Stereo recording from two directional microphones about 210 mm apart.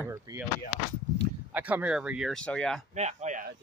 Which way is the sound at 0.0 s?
10° right (ahead or behind).